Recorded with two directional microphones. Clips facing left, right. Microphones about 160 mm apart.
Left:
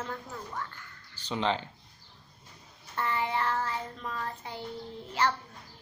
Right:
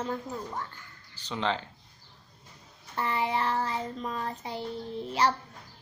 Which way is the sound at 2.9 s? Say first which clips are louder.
Right 2 dB; 15° right (ahead or behind).